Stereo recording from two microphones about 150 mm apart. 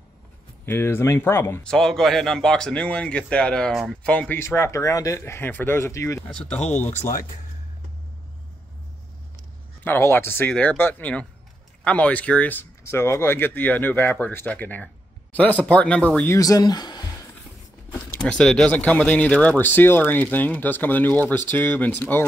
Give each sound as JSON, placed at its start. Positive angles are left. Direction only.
{"t": 0.7, "sound": "speech", "side_deg": 15}
{"t": 1.6, "sound": "a man's voice", "side_deg": 5}
{"t": 6.2, "sound": "speech", "side_deg": 5}
{"t": 9.8, "sound": "speech", "side_deg": 15}
{"t": 16.3, "sound": "speech", "side_deg": 25}
{"t": 18.2, "sound": "speech", "side_deg": 5}